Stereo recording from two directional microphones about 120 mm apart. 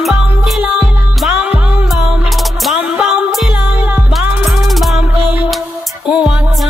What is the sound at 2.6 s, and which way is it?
Music, 5° right (ahead or behind).